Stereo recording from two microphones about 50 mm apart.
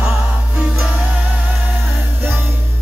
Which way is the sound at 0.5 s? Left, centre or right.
Right.